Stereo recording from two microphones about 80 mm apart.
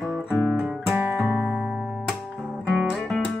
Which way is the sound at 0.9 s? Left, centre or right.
Right.